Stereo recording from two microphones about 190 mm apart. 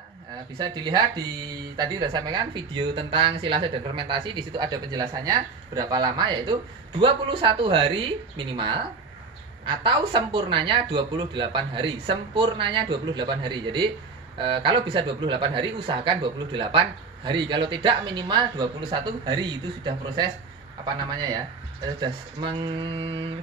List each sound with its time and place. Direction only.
0.6 s speech: 25° right (ahead or behind)